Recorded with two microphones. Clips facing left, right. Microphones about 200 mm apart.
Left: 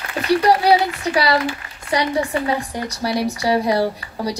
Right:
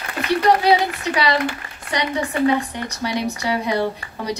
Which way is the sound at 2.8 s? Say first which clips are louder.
Left 2 dB; 35° left (ahead or behind).